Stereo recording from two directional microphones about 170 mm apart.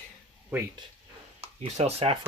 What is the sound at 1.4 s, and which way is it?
Speech, 35° right (ahead or behind).